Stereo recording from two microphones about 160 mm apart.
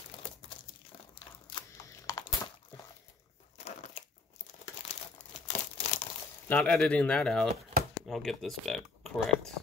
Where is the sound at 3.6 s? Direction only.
40° left (ahead or behind).